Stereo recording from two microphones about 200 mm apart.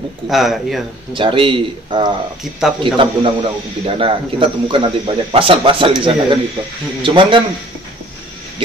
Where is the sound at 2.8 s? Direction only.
25° right (ahead or behind).